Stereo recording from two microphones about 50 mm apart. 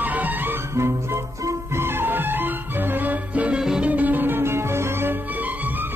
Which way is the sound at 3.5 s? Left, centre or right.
Centre.